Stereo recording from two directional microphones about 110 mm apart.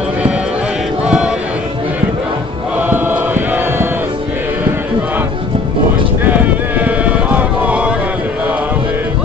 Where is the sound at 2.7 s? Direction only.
15° right (ahead or behind).